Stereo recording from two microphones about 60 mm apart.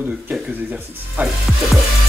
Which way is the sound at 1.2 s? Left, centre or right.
Right.